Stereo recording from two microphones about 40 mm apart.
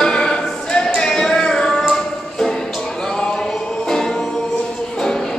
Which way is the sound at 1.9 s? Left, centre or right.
Centre.